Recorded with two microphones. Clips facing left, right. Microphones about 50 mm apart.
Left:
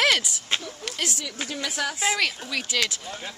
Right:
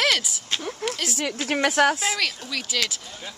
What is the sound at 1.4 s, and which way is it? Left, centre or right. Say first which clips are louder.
Speech: right 10 dB; right.